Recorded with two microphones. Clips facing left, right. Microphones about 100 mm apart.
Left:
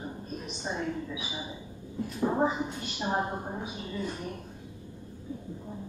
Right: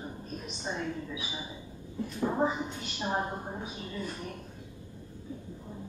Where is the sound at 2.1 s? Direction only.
15° left (ahead or behind).